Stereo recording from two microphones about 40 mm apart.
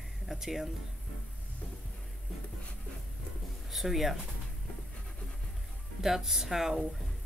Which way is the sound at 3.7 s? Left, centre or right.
Centre.